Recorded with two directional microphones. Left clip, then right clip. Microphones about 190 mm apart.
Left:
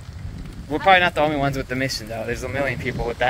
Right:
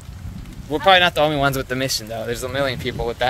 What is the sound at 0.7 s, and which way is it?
Speech, 35° right (ahead or behind).